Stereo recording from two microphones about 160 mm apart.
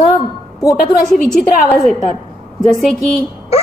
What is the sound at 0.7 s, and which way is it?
A woman's voice, centre (ahead or behind).